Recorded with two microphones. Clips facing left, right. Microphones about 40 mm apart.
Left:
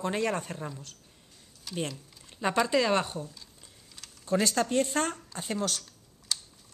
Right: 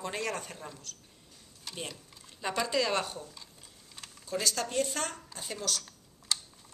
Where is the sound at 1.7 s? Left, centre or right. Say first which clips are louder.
Left 7 dB; centre.